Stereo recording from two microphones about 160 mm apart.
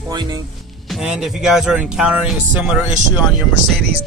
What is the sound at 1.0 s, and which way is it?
Speech, 5° right (ahead or behind).